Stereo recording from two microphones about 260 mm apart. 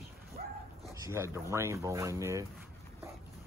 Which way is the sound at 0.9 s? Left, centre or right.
Centre.